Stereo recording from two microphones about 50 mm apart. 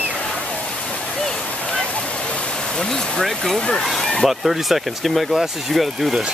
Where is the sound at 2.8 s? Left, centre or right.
Centre.